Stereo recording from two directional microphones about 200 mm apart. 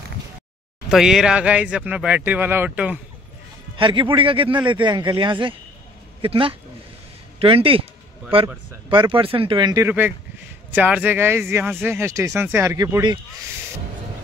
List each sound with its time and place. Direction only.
0.8 s speech: centre (ahead or behind)
3.7 s speech: 25° right (ahead or behind)